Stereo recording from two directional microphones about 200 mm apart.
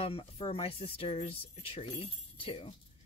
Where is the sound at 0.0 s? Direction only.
30° left (ahead or behind).